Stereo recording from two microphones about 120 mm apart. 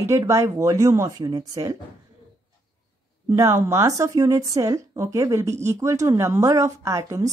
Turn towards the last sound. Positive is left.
turn(degrees=-25)  # may be behind; listen again after turning